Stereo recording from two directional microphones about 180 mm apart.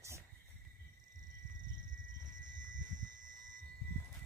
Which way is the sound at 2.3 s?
45° right (ahead or behind).